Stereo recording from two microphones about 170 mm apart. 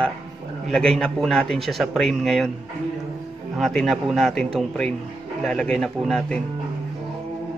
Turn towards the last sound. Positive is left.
turn(degrees=5)  # may be behind; listen again after turning